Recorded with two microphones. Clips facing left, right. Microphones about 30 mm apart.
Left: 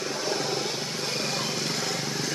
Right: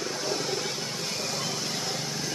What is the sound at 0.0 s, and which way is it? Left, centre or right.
Wild animals, centre.